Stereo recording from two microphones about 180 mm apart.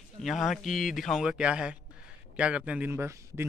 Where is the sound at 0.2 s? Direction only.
Centre (ahead or behind).